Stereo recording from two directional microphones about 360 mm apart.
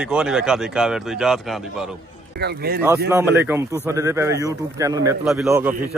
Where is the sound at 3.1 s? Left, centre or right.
Centre.